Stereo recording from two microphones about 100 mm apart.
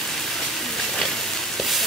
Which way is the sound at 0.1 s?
Centre (ahead or behind).